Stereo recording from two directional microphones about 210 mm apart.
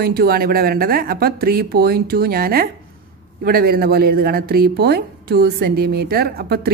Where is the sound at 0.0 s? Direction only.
45° right (ahead or behind).